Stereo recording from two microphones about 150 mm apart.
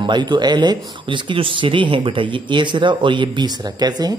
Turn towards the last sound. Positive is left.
turn(degrees=-25)  # may be behind; listen again after turning